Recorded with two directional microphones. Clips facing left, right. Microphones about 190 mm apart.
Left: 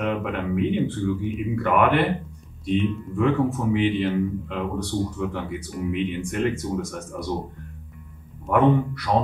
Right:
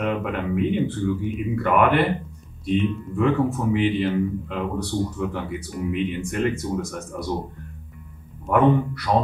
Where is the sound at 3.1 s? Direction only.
5° right (ahead or behind).